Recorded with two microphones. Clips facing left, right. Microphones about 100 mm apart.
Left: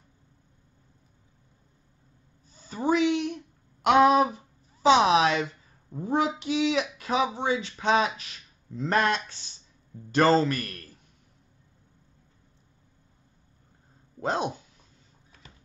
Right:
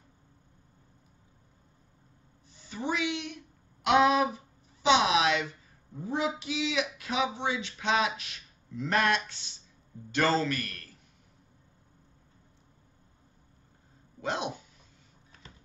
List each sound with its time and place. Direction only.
2.5 s a sound: 40° left (ahead or behind)
5.9 s a man's voice: 50° left (ahead or behind)
14.2 s speech: 40° left (ahead or behind)